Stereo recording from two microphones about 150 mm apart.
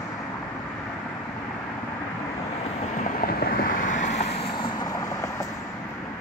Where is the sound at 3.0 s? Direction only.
70° left (ahead or behind); by 5.5 s 20° left (ahead or behind).